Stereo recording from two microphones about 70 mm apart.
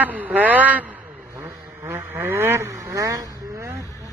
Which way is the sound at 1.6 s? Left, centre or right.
Right.